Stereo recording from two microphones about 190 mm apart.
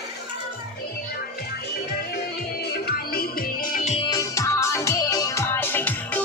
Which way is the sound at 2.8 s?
50° left (ahead or behind).